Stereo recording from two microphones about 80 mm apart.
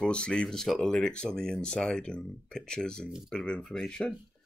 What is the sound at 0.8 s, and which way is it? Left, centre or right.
Speech, centre.